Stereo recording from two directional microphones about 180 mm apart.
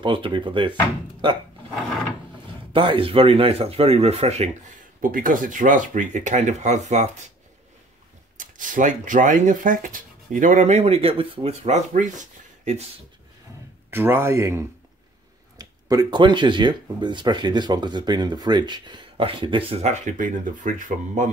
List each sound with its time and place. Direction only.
0.0 s speech: 25° right (ahead or behind)
2.7 s speech: 30° right (ahead or behind)
5.0 s speech: 50° right (ahead or behind)
8.4 s speech: 45° right (ahead or behind)
13.8 s a man's voice: 10° right (ahead or behind); by 21.3 s 45° right (ahead or behind)